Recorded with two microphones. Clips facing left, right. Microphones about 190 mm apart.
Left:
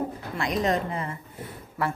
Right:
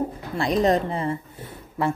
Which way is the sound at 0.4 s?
35° right (ahead or behind).